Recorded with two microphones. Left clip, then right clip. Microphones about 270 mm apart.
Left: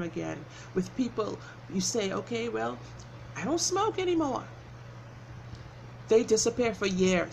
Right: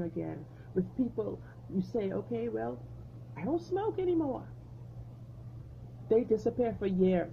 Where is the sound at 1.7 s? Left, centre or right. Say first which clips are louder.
Left 4 dB; centre.